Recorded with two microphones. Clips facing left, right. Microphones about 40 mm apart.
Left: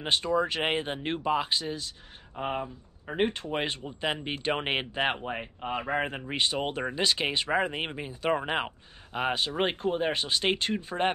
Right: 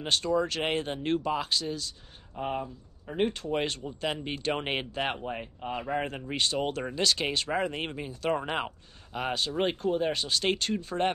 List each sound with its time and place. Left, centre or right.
0.0 s speech: left
3.5 s speech: left